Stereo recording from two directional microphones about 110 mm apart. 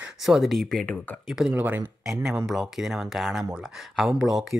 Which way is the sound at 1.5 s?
20° right (ahead or behind).